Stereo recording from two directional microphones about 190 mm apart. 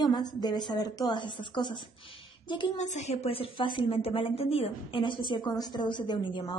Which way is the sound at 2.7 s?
40° left (ahead or behind).